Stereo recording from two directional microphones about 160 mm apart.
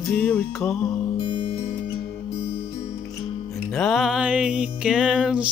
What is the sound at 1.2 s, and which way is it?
Music, 30° left (ahead or behind).